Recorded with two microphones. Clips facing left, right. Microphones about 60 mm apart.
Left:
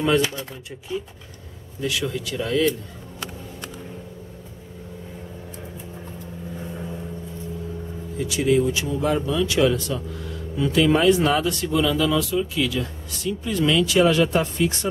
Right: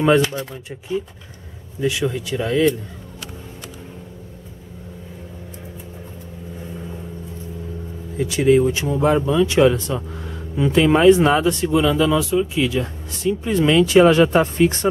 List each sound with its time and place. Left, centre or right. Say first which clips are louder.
0.0 s speech: right 5 dB; right
1.8 s speech: right 5 dB; right
8.2 s speech: right 5 dB; right